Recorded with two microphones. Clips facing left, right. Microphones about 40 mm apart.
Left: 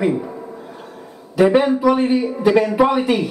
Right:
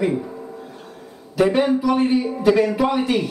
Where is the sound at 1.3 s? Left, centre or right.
Centre.